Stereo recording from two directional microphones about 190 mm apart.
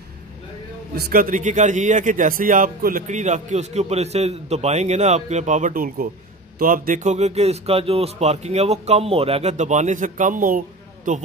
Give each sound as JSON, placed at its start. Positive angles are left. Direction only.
{"t": 0.9, "sound": "a man's voice", "side_deg": -50}